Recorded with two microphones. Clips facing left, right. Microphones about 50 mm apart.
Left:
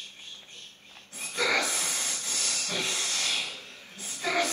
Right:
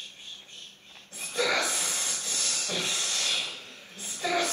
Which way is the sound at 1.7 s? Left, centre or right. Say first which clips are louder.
Even; left.